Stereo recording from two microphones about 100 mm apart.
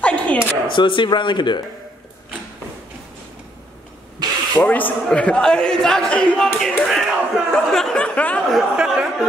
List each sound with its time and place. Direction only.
0.0 s a sound: 15° left (ahead or behind)
0.7 s speech: 55° left (ahead or behind)
4.6 s speech: 15° left (ahead or behind)
8.5 s speech: 5° right (ahead or behind)